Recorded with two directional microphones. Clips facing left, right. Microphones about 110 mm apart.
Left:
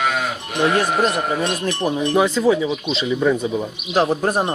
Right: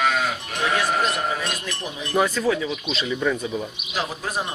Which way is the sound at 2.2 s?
20° left (ahead or behind).